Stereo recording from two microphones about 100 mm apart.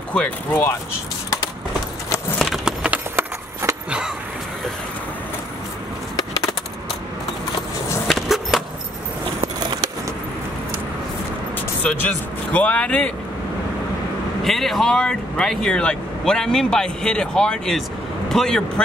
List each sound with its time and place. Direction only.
0.1 s speech: 10° left (ahead or behind)
2.3 s a sound: centre (ahead or behind)
2.8 s horse: 15° right (ahead or behind)
3.6 s vehicle: 25° right (ahead or behind)
6.1 s bird: 35° left (ahead or behind)
8.1 s skateboard: centre (ahead or behind)
12.5 s speech: 15° left (ahead or behind)
14.4 s speech: centre (ahead or behind)